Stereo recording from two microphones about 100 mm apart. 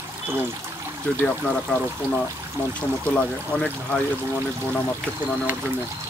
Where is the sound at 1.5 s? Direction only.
10° left (ahead or behind).